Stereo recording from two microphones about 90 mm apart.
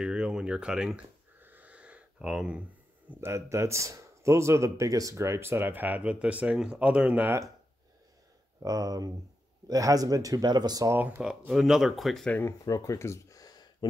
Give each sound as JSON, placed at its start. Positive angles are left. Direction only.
{"t": 0.0, "sound": "speech", "side_deg": -10}
{"t": 1.4, "sound": "a sound", "side_deg": -20}
{"t": 3.1, "sound": "speech", "side_deg": -25}
{"t": 8.6, "sound": "speech", "side_deg": -45}
{"t": 10.9, "sound": "speech", "side_deg": -20}
{"t": 11.4, "sound": "speech", "side_deg": -5}
{"t": 12.4, "sound": "a sound", "side_deg": 40}